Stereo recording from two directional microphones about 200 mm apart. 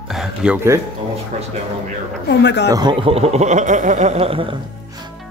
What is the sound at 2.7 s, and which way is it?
Speech, 20° right (ahead or behind).